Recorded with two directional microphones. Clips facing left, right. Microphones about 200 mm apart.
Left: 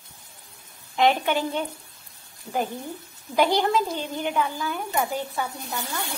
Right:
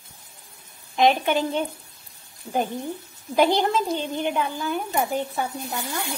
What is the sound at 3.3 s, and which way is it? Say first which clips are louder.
A woman's voice: right 1 dB; 20° right (ahead or behind).